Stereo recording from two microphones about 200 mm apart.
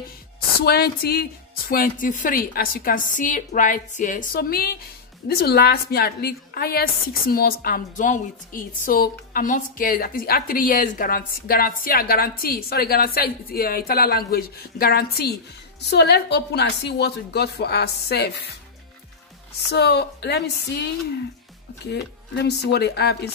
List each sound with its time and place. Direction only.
0.6 s a woman's voice: 50° left (ahead or behind)
19.7 s a woman's voice: 55° left (ahead or behind)